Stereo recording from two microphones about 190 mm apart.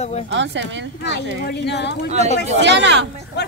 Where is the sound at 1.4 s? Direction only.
65° left (ahead or behind).